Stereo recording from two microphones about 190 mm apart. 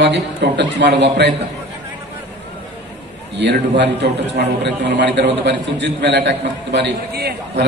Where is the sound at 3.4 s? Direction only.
60° right (ahead or behind).